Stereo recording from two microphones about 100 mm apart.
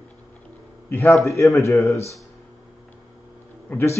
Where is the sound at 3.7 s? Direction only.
15° left (ahead or behind).